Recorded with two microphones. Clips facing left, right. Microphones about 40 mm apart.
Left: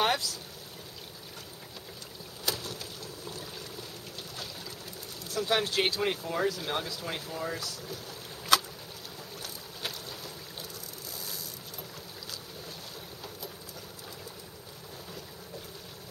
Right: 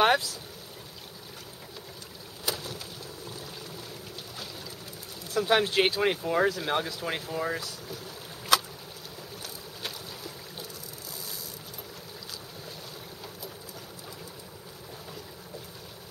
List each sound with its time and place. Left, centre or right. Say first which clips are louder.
0.0 s vehicle: right 5 dB; centre
2.4 s boat: right 1 dB; centre
3.3 s a sound: left 2 dB; centre
5.3 s speech: right 4 dB; centre
9.4 s boat: even; centre